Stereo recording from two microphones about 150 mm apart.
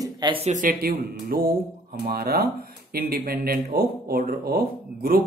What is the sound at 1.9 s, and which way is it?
Speech, 90° right.